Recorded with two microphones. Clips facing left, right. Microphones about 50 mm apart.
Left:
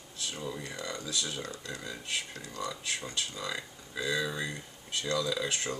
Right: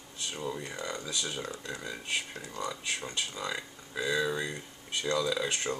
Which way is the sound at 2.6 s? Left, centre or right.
Centre.